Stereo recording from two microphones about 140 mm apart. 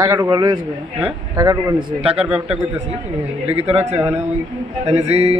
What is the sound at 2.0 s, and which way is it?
Speech, 45° right (ahead or behind).